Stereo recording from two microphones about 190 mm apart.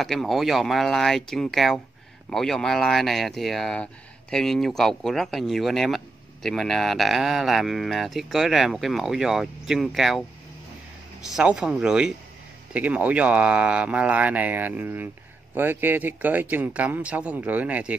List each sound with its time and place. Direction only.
0.0 s speech: centre (ahead or behind)
11.2 s speech: 5° right (ahead or behind)